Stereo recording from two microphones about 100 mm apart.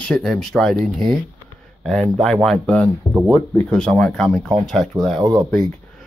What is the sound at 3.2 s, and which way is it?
Speech, 20° left (ahead or behind).